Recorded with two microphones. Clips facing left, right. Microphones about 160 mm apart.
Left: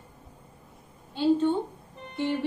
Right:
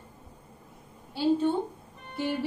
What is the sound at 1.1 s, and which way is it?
Speech, 10° right (ahead or behind).